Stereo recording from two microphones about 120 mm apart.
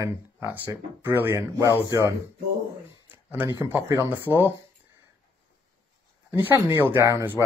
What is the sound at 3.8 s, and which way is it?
Speech, 20° right (ahead or behind).